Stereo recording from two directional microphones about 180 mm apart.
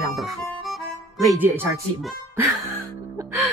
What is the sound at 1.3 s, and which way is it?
Speech, 10° right (ahead or behind).